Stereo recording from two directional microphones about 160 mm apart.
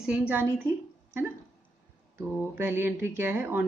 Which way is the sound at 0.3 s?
15° right (ahead or behind).